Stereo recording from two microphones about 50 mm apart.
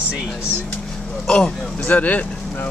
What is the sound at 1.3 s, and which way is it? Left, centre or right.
Speech, centre.